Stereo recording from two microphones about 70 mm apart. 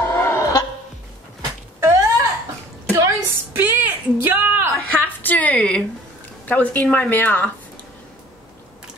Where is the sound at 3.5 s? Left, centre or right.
Right.